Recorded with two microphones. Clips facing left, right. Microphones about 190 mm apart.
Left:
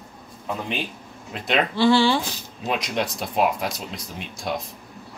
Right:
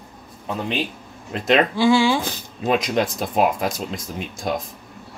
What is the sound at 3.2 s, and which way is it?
Speech, 50° right (ahead or behind).